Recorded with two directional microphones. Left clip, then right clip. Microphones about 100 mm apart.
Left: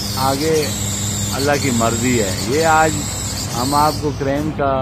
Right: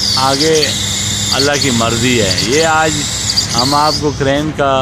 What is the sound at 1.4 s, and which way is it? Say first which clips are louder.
Speech: right 3 dB; 50° right (ahead or behind).